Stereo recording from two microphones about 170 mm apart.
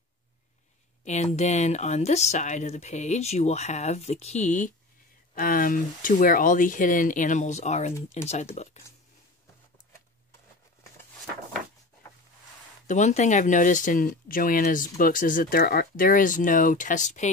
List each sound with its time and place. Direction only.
1.0 s speech: 40° left (ahead or behind)
12.8 s speech: 45° left (ahead or behind)